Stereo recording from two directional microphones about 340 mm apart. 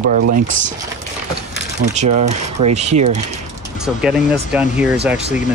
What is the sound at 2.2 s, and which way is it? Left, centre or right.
Speech, centre.